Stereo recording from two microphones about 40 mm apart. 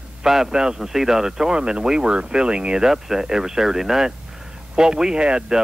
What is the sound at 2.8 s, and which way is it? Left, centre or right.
Speech, centre.